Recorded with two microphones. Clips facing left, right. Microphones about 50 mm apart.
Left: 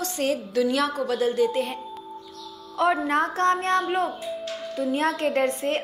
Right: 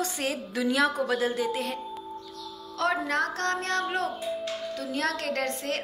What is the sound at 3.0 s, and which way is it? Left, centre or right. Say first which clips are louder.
Speech: left 6 dB; left.